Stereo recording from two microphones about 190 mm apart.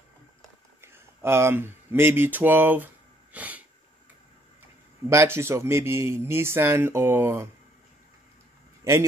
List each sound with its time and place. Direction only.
0.7 s speech: 15° right (ahead or behind)
3.3 s sneeze: 10° right (ahead or behind)
5.1 s speech: 15° right (ahead or behind)
8.8 s a man's voice: 15° right (ahead or behind)